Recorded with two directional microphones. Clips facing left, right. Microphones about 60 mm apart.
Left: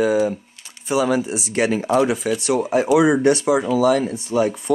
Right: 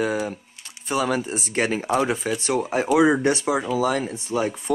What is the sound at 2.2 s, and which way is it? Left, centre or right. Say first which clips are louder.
Speech: left 4 dB; right.